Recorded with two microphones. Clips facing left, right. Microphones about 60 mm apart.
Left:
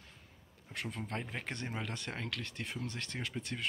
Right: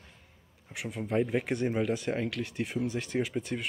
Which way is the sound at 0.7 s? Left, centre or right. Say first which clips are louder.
Right 9 dB; centre.